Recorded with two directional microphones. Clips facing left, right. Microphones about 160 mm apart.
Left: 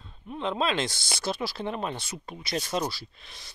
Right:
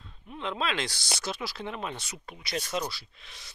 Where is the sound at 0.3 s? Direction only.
35° left (ahead or behind).